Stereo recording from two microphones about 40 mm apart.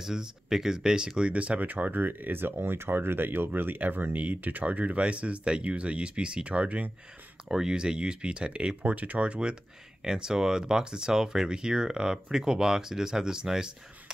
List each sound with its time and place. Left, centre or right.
0.0 s speech: centre; by 6.9 s right
7.4 s speech: centre
8.8 s speech: right
10.0 s speech: centre